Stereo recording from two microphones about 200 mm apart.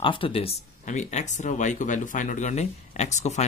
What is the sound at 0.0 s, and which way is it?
Speech, 25° left (ahead or behind).